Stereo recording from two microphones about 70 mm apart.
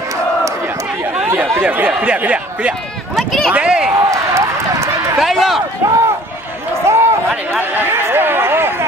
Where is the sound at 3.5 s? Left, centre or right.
Centre.